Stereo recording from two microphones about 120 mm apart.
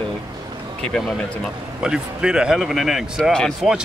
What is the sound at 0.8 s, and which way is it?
Speech, 5° left (ahead or behind).